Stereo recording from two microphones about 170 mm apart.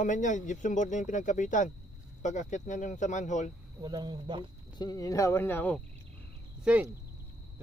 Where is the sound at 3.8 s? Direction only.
25° right (ahead or behind).